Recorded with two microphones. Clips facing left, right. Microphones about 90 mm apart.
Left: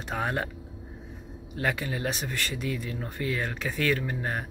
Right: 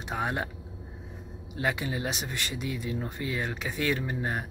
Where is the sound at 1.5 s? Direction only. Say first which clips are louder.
Even; 20° right (ahead or behind).